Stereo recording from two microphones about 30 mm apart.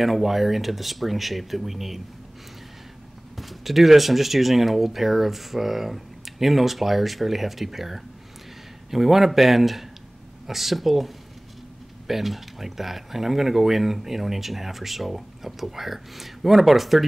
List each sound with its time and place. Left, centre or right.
0.0 s speech: centre
3.3 s speech: centre